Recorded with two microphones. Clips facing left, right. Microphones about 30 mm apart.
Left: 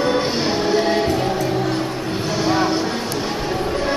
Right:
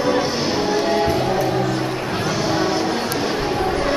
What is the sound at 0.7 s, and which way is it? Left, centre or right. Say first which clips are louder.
Music: left 2 dB; centre.